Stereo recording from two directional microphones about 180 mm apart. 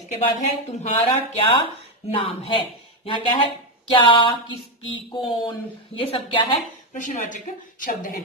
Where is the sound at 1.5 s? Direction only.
30° left (ahead or behind).